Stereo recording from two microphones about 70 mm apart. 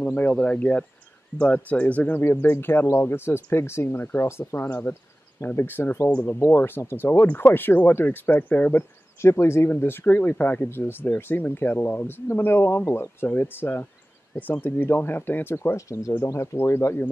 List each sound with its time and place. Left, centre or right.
0.0 s speech: left
4.6 s speech: centre
5.4 s speech: left
9.2 s speech: left
15.7 s speech: left